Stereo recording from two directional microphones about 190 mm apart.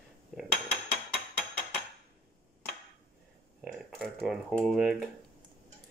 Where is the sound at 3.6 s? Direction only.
Centre (ahead or behind).